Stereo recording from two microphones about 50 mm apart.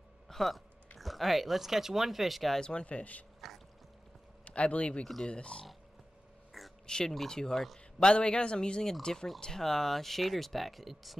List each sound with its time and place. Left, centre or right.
0.3 s speech: centre
2.6 s speech: left
3.3 s pour: centre
4.5 s speech: left
5.0 s speech: centre
5.3 s speech: left
6.6 s a sound: centre
6.9 s speech: centre